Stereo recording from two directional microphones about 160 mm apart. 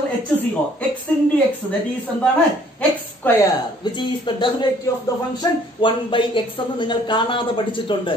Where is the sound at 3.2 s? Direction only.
10° left (ahead or behind).